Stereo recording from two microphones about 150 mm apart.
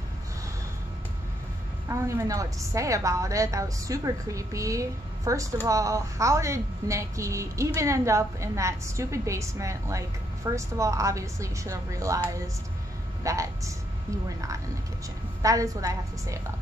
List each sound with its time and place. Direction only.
1.9 s a woman's voice: 20° right (ahead or behind)
15.4 s a woman's voice: 20° right (ahead or behind)